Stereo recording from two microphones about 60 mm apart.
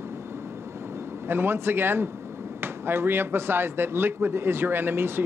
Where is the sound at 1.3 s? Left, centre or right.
Right.